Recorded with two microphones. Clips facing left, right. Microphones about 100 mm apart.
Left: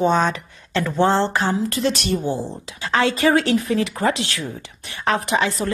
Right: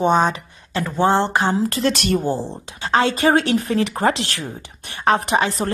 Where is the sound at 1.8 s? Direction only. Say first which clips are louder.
Right 2 dB; 60° right (ahead or behind).